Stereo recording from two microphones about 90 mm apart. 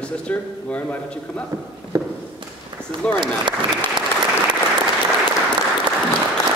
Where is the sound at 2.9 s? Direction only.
60° right (ahead or behind).